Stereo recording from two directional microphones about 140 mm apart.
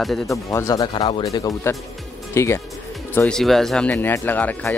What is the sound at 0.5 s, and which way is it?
Speech, 25° left (ahead or behind).